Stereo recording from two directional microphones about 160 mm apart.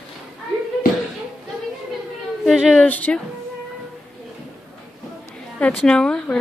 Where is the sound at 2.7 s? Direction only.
10° left (ahead or behind).